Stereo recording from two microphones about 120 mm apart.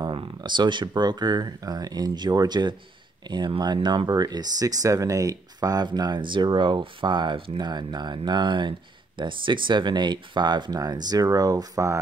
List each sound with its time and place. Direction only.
0.0 s speech: 40° right (ahead or behind)